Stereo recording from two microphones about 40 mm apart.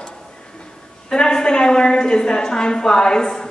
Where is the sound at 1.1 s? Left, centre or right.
Left.